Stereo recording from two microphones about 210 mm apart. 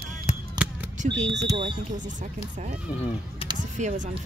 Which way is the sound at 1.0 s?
35° right (ahead or behind).